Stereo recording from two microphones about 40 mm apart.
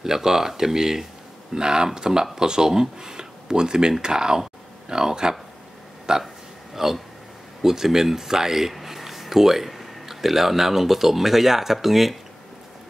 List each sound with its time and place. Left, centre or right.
0.0 s speech: centre
6.7 s speech: centre